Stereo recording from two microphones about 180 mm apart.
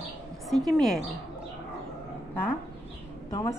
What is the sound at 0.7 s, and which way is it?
Speech, centre (ahead or behind).